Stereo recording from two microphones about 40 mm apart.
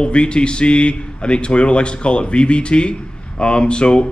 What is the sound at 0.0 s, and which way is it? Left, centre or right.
Speech, left.